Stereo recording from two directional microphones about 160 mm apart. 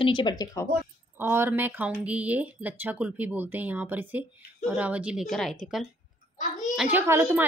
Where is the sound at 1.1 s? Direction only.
15° right (ahead or behind).